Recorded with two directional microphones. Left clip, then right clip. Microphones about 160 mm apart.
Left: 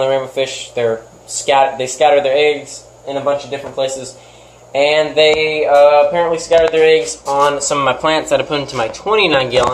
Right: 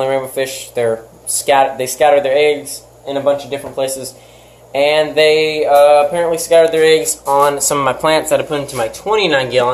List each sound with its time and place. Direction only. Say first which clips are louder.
0.0 s speech: left 1 dB; 5° right (ahead or behind)
6.9 s speech: right 1 dB; 25° right (ahead or behind); by 9.7 s centre (ahead or behind)